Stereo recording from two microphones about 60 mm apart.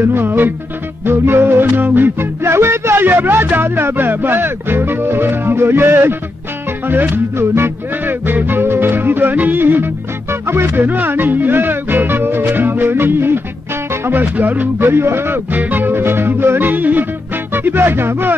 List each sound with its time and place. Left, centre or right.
0.0 s music: right
14.9 s music: right